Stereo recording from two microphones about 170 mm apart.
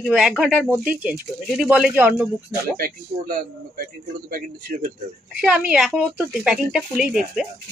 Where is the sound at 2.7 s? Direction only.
60° right (ahead or behind).